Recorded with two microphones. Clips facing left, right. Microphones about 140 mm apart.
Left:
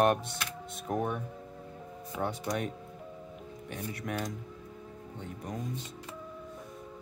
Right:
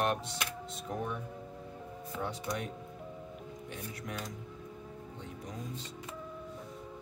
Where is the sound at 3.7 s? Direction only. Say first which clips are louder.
Left 6 dB; 60° left (ahead or behind).